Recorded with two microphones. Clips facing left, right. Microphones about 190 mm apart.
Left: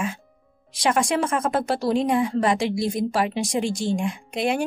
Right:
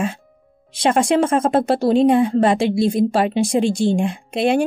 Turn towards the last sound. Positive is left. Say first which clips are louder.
# right 6 dB
turn(degrees=-30)  # may be behind; listen again after turning